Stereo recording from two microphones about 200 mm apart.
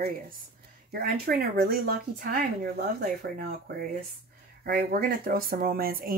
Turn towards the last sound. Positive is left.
turn(degrees=-50)  # may be behind; listen again after turning